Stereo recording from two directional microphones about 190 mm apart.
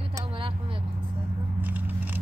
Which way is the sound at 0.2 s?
25° right (ahead or behind).